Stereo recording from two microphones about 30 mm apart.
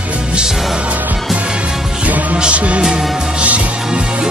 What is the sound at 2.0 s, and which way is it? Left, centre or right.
Music, right.